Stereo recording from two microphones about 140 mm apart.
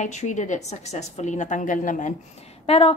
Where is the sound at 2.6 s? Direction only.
45° left (ahead or behind).